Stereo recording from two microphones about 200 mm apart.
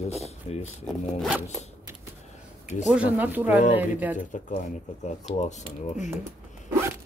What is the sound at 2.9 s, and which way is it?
Speech, 5° right (ahead or behind).